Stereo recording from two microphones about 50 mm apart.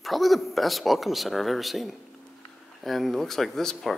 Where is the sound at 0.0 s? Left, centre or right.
Centre.